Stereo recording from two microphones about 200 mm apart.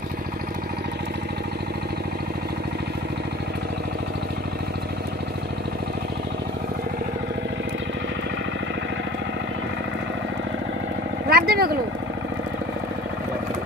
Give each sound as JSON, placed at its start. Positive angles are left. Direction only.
{"t": 11.2, "sound": "vehicle", "side_deg": -50}